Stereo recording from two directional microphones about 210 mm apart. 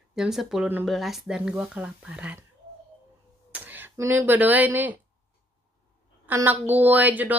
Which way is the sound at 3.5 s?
10° right (ahead or behind).